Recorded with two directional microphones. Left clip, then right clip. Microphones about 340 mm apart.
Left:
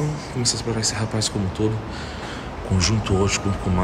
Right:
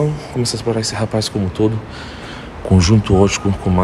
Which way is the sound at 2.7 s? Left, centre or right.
Centre.